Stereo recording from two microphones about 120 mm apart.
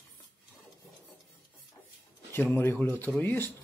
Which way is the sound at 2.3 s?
15° left (ahead or behind).